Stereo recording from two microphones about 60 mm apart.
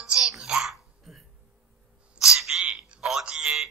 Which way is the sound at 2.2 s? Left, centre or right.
Centre.